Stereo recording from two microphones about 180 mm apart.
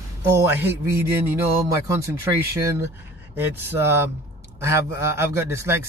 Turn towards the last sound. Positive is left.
turn(degrees=-15)  # may be behind; listen again after turning